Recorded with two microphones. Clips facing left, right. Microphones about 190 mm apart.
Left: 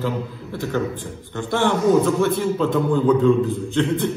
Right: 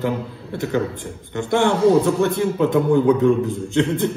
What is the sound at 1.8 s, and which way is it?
Speech, 30° right (ahead or behind).